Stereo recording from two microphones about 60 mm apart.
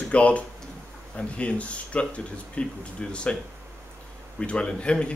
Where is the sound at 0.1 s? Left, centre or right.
Left.